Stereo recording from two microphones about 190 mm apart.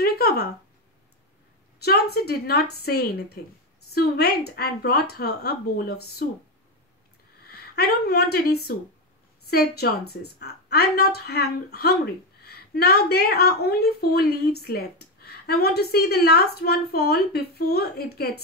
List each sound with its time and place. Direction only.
0.0 s a sound: 55° left (ahead or behind)
1.8 s a woman's voice: 55° left (ahead or behind)
7.7 s a woman's voice: 55° left (ahead or behind)